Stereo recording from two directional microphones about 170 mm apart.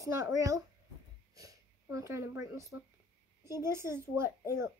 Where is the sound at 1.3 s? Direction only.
20° right (ahead or behind).